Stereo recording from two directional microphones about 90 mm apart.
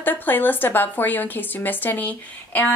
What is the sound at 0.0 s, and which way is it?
A woman's voice, 20° left (ahead or behind).